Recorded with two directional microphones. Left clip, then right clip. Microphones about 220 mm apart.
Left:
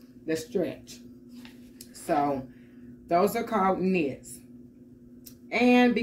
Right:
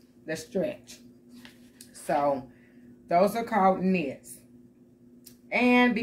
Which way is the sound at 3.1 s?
15° right (ahead or behind).